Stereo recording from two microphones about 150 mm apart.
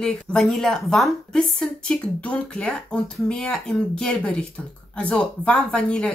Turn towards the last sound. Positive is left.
turn(degrees=5)  # may be behind; listen again after turning